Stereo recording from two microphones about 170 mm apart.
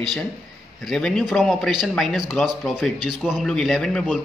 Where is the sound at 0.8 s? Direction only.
5° left (ahead or behind).